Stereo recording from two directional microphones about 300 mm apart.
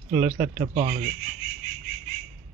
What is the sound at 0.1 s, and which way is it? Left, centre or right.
Speech, centre.